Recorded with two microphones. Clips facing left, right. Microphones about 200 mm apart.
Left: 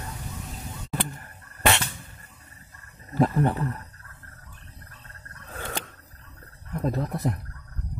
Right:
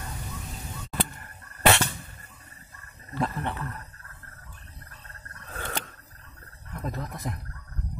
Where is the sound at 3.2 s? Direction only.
35° left (ahead or behind).